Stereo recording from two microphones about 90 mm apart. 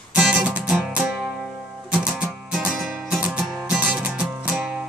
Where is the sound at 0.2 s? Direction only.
5° right (ahead or behind).